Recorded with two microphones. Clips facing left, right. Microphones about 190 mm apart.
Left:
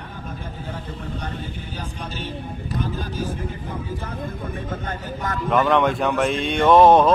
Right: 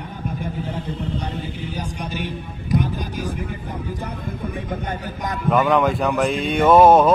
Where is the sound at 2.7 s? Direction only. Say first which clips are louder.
Right 6 dB; 15° right (ahead or behind).